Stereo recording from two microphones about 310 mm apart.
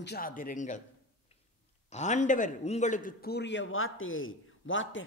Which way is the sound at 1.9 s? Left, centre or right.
Left.